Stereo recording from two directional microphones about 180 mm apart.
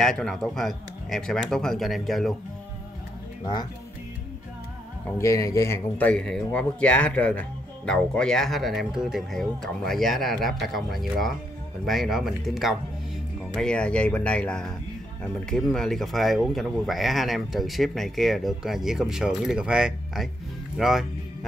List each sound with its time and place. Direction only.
0.0 s speech: 5° left (ahead or behind)
5.1 s speech: 15° left (ahead or behind); by 21.0 s centre (ahead or behind)